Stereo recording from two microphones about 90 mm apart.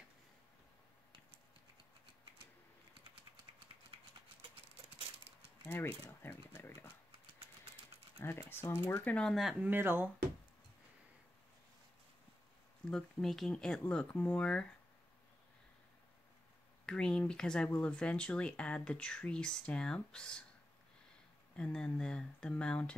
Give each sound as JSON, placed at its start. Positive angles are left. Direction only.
{"t": 5.7, "sound": "speech", "side_deg": 25}
{"t": 8.2, "sound": "speech", "side_deg": 25}
{"t": 9.0, "sound": "speech", "side_deg": 15}
{"t": 9.3, "sound": "speech", "side_deg": -5}
{"t": 9.6, "sound": "speech", "side_deg": -25}
{"t": 12.9, "sound": "speech", "side_deg": 5}
{"t": 16.8, "sound": "speech", "side_deg": 10}
{"t": 21.7, "sound": "speech", "side_deg": 10}